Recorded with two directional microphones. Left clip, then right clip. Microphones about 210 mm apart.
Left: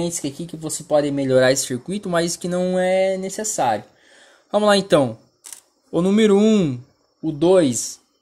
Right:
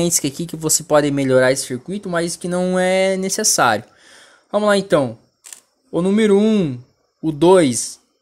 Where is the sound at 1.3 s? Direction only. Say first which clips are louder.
Right 1 dB; 5° right (ahead or behind).